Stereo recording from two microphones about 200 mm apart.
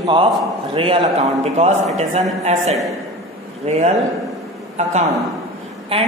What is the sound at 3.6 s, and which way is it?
Speech, 30° right (ahead or behind).